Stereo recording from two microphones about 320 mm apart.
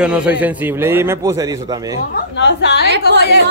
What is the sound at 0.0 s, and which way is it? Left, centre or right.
A man's voice, centre.